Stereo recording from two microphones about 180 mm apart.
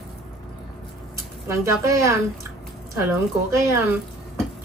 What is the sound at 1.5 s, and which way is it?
A woman's voice, 15° right (ahead or behind).